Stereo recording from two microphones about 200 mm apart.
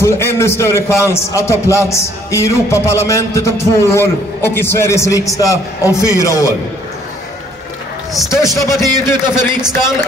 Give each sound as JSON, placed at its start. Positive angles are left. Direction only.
{"t": 0.0, "sound": "a man's voice", "side_deg": 10}
{"t": 8.3, "sound": "a man's voice", "side_deg": 15}